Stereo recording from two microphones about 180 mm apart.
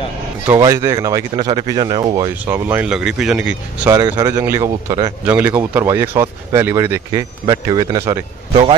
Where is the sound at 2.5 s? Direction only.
10° right (ahead or behind).